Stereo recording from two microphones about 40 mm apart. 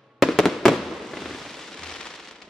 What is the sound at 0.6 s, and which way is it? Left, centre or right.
Fireworks, centre.